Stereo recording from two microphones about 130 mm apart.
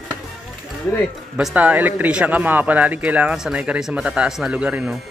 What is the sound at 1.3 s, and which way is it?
A man's voice, 10° right (ahead or behind).